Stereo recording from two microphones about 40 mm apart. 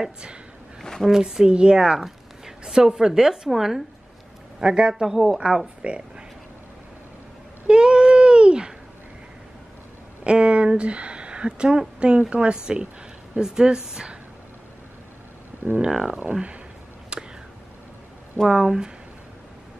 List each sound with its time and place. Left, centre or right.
1.1 s speech: centre
2.0 s zipper: centre
3.4 s a man's voice: centre
4.6 s a man's voice: centre
5.0 s a man's voice: centre
5.8 s speech: right
7.6 s a sound: right
10.2 s speech: right
15.6 s speech: right
16.1 s speech: right
17.1 s a sound: right
18.5 s a man's voice: centre